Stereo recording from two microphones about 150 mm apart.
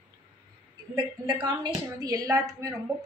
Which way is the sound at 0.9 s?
30° right (ahead or behind).